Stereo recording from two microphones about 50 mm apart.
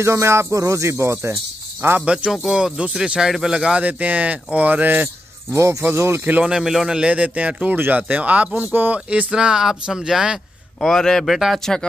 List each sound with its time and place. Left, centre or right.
0.0 s speech: right
0.9 s speech: right
2.0 s speech: right
3.8 s speech: right
5.5 s speech: right
6.4 s speech: centre
7.1 s speech: right
8.6 s speech: right
8.9 s speech: right
9.3 s speech: centre
10.8 s speech: centre
11.6 s speech: centre